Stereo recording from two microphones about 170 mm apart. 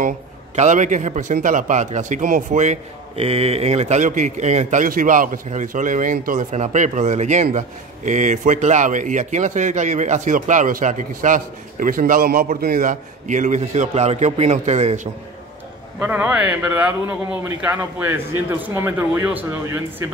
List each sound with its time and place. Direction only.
0.6 s a man's voice: 45° right (ahead or behind)
16.0 s speech: 10° right (ahead or behind)